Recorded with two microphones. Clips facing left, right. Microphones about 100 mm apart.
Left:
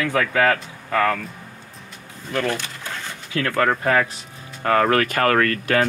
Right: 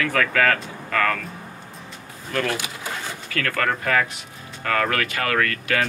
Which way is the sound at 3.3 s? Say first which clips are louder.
Left 4 dB; 25° left (ahead or behind).